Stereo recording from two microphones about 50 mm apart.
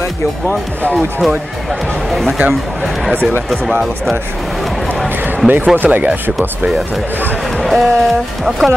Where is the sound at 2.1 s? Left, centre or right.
Centre.